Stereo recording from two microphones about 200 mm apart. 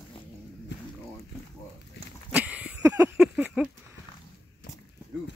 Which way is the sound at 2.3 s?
5° right (ahead or behind).